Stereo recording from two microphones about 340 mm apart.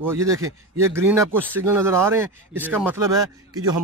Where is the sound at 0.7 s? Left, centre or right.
Centre.